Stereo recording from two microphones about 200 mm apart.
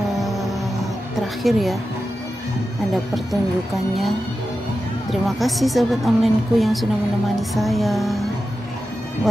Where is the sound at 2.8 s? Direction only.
Centre (ahead or behind).